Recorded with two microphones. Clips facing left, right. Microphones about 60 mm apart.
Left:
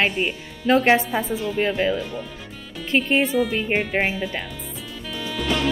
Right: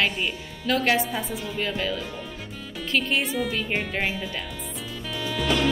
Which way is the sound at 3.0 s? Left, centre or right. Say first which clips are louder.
Left 6 dB; centre.